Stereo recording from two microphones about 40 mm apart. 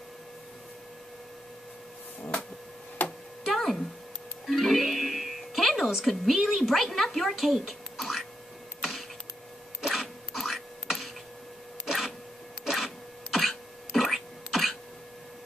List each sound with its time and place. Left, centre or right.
3.0 s a sound: left
3.4 s music: centre
6.0 s speech: centre
9.8 s printer: centre
12.6 s throat clearing: centre